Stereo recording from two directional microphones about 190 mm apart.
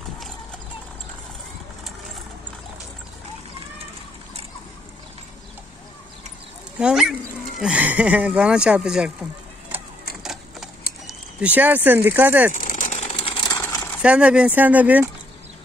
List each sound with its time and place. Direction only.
6.8 s speech: 5° right (ahead or behind)
10.2 s a sound: centre (ahead or behind)
11.4 s speech: 10° right (ahead or behind)
12.5 s vehicle: 40° left (ahead or behind); by 13.8 s 20° left (ahead or behind)
14.0 s speech: 5° right (ahead or behind)